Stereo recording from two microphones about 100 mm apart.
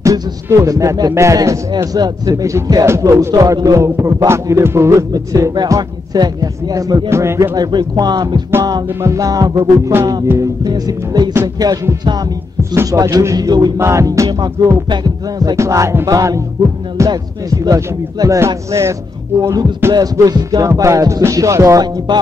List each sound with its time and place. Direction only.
0.0 s a man's voice: 30° right (ahead or behind)
7.1 s speech: 30° right (ahead or behind)
7.5 s a man's voice: 45° right (ahead or behind)
13.7 s a man's voice: 30° right (ahead or behind)
22.1 s speech: 45° right (ahead or behind)